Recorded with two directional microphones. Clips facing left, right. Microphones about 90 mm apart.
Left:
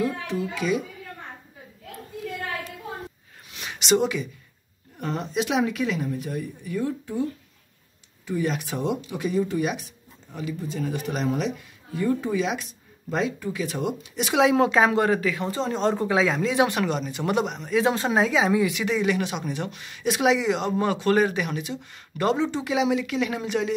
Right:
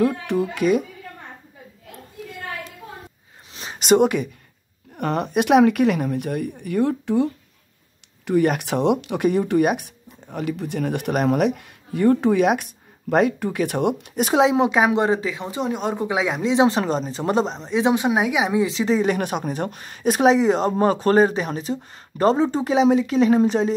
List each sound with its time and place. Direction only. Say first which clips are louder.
0.0 s speech: right 6 dB; 60° right (ahead or behind)
3.5 s a sound: right 1 dB; 30° right (ahead or behind)
3.8 s speech: right 6 dB; 50° right (ahead or behind); by 7.2 s 70° right (ahead or behind)
8.3 s speech: right 8 dB; 65° right (ahead or behind); by 14.3 s 50° right (ahead or behind)
14.3 s speech: right 2 dB; 20° right (ahead or behind)